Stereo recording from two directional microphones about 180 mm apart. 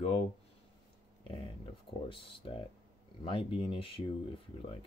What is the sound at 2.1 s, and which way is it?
Speech, 30° left (ahead or behind).